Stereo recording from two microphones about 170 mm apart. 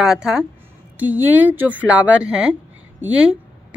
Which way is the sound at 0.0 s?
5° right (ahead or behind).